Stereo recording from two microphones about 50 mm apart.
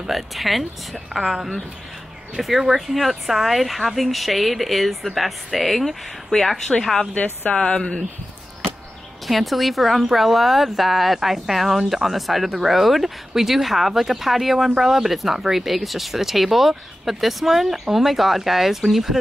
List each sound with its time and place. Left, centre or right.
0.1 s speech: centre
7.2 s speech: left
9.3 s speech: centre